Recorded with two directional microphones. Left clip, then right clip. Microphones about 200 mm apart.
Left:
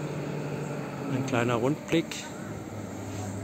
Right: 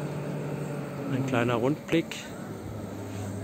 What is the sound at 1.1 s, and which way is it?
Speech, 5° right (ahead or behind).